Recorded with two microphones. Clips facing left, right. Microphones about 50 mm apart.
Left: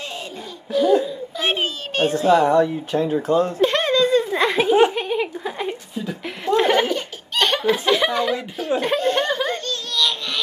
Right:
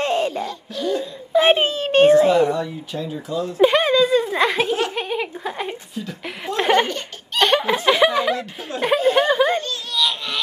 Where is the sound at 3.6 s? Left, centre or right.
Centre.